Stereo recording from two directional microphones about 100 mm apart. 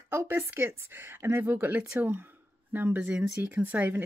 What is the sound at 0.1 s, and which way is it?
Speech, 25° right (ahead or behind).